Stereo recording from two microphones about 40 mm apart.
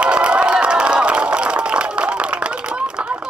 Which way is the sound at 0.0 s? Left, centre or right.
Right.